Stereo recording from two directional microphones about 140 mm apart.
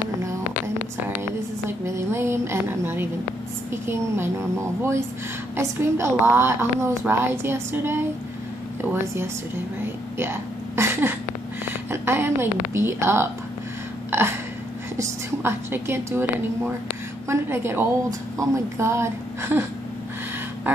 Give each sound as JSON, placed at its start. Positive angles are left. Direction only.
{"t": 1.9, "sound": "a woman's voice", "side_deg": -20}
{"t": 10.8, "sound": "a sound", "side_deg": -15}
{"t": 11.9, "sound": "a woman's voice", "side_deg": -15}
{"t": 15.0, "sound": "a woman's voice", "side_deg": -15}